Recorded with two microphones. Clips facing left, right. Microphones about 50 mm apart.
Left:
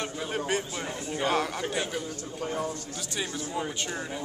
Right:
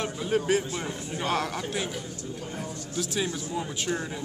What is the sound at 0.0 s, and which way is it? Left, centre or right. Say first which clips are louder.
Speech: right 4 dB; centre.